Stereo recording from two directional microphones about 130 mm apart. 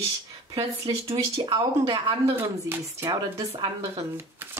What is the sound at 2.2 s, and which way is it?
Speech, 20° right (ahead or behind).